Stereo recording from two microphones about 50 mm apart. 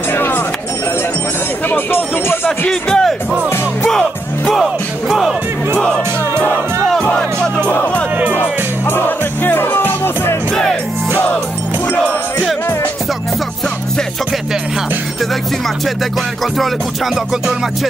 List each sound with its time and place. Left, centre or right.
0.1 s a sound: left
1.7 s music: left
2.7 s music: centre
7.2 s music: centre
8.8 s music: left
10.5 s music: centre
11.9 s music: left